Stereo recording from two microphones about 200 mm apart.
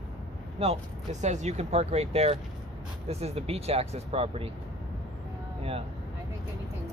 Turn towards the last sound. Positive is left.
turn(degrees=-30)  # may be behind; listen again after turning